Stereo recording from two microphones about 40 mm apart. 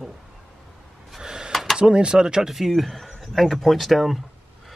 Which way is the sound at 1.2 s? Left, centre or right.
Centre.